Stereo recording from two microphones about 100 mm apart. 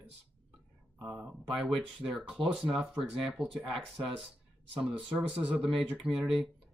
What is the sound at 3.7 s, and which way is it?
Speech, 15° right (ahead or behind).